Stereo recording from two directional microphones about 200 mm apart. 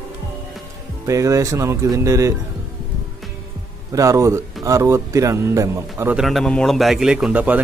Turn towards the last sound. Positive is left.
turn(degrees=-5)  # may be behind; listen again after turning